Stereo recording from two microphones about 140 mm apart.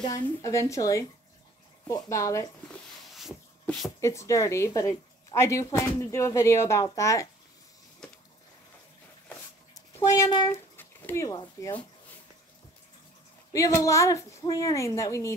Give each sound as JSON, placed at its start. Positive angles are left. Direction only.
{"t": 0.0, "sound": "a woman's voice", "side_deg": 25}
{"t": 3.6, "sound": "speech", "side_deg": 0}
{"t": 4.0, "sound": "a woman's voice", "side_deg": 20}
{"t": 9.8, "sound": "a child's voice", "side_deg": 20}
{"t": 10.8, "sound": "a sound", "side_deg": 15}
{"t": 11.2, "sound": "speech", "side_deg": 30}
{"t": 13.5, "sound": "a woman's voice", "side_deg": 25}